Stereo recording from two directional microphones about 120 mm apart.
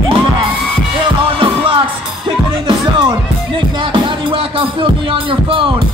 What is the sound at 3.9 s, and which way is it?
Speech, 45° right (ahead or behind).